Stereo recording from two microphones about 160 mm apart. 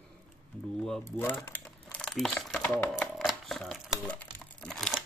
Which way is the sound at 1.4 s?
5° left (ahead or behind).